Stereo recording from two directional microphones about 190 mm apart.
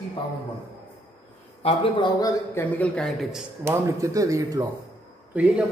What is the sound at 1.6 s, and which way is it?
A man's voice, 25° left (ahead or behind).